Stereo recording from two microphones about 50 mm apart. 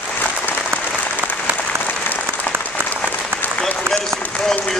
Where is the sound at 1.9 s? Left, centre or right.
Left.